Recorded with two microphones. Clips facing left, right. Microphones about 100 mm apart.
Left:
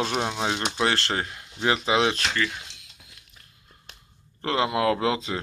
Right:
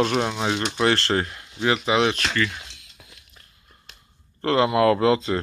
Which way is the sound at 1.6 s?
25° left (ahead or behind).